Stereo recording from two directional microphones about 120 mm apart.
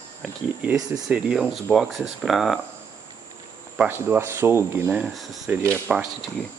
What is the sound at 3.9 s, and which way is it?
Speech, 20° right (ahead or behind).